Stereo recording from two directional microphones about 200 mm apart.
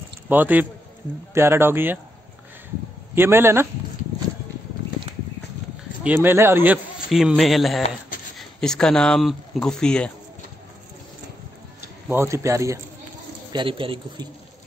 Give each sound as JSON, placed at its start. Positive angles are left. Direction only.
{"t": 0.3, "sound": "speech", "side_deg": -10}
{"t": 3.2, "sound": "speech", "side_deg": -10}
{"t": 6.0, "sound": "a man's voice", "side_deg": -10}
{"t": 12.1, "sound": "a man's voice", "side_deg": -15}